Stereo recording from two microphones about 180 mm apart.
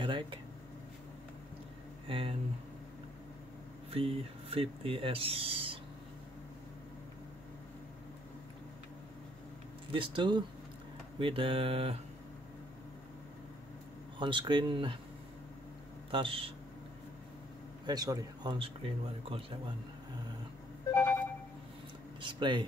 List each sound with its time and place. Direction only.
0.0 s speech: 25° right (ahead or behind)
2.0 s speech: 30° right (ahead or behind)
3.9 s speech: 30° right (ahead or behind)
9.9 s speech: 25° right (ahead or behind)
14.1 s speech: 25° right (ahead or behind)
16.1 s speech: 30° right (ahead or behind)
17.8 s speech: 20° right (ahead or behind)
20.9 s vehicle: 10° left (ahead or behind)
22.2 s speech: 25° right (ahead or behind)